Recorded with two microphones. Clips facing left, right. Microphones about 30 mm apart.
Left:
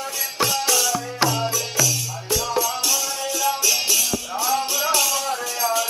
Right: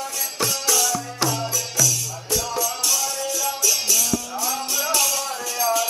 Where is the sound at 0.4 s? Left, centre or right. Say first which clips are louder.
Left 2 dB; centre.